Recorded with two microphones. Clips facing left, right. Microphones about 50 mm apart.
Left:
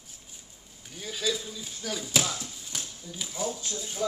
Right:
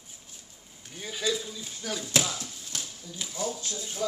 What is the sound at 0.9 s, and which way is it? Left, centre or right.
Speech, centre.